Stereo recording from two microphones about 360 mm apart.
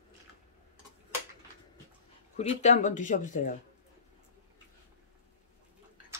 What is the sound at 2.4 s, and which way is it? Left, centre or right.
Speech, centre.